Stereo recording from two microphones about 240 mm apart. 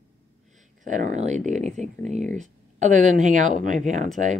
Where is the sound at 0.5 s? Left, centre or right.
Right.